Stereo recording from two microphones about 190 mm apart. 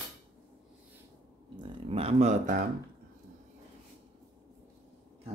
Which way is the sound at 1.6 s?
30° right (ahead or behind).